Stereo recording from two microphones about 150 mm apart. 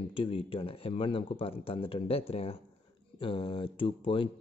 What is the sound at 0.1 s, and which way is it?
Speech, 35° left (ahead or behind).